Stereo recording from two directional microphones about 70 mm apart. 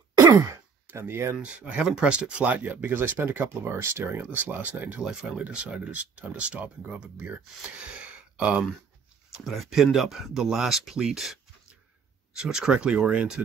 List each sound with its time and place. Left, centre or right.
0.2 s throat clearing: right
0.8 s speech: right
1.4 s speech: centre
9.4 s speech: centre
12.4 s speech: centre